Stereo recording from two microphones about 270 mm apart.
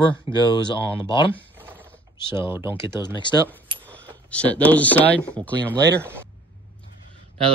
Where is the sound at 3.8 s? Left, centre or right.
Centre.